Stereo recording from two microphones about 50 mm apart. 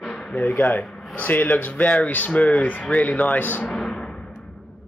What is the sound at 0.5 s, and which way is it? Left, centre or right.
Speech, left.